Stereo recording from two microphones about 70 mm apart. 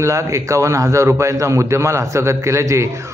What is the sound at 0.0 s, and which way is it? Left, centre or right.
A man's voice, right.